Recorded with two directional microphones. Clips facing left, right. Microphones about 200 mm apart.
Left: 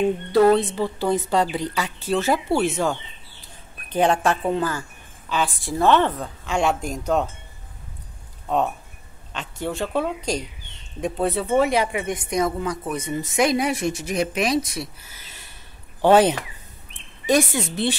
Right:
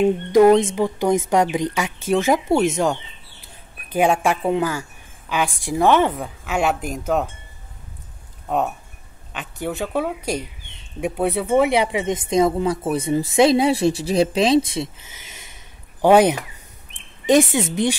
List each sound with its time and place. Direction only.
0.3 s a woman's voice: 15° right (ahead or behind)
3.9 s a woman's voice: 10° right (ahead or behind)
9.3 s speech: 5° right (ahead or behind); by 14.9 s 25° right (ahead or behind)
15.3 s a sound: 20° right (ahead or behind)
17.3 s speech: 20° right (ahead or behind)